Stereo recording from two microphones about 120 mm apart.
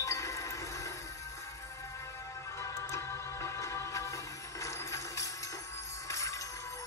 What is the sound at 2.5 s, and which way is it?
Music, 25° left (ahead or behind).